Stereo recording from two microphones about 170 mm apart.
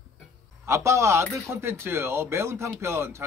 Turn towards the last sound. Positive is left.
turn(degrees=-15)  # may be behind; listen again after turning